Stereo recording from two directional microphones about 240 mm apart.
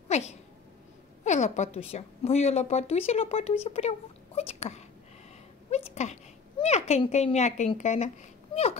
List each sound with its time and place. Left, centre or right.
0.1 s a woman's voice: left
4.4 s whispering: left
5.7 s a sound: left
6.6 s speech: left